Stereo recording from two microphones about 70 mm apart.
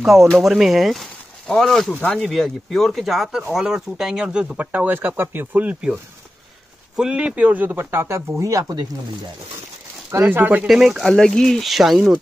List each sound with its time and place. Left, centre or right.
0.0 s speech: centre; by 5.8 s right
7.0 s speech: centre; by 8.8 s right
10.2 s speech: right
10.7 s speech: centre
11.1 s speech: centre